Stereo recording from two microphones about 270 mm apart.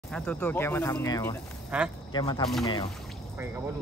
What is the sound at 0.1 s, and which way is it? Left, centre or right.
Speech, centre.